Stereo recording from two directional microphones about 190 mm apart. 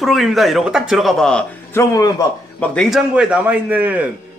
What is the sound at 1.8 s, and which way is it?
Speech, 20° left (ahead or behind).